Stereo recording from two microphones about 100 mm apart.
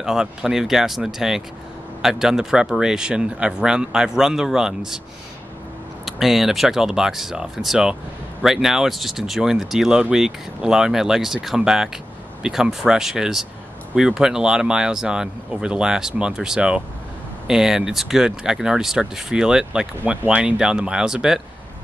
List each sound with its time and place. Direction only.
0.0 s speech: 5° right (ahead or behind)
6.0 s speech: centre (ahead or behind)